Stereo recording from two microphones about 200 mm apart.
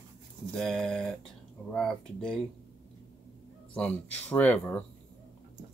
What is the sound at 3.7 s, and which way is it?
Speech, 5° left (ahead or behind).